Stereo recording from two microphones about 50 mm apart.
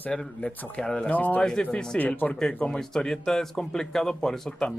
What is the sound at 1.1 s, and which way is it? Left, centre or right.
A man's voice, left.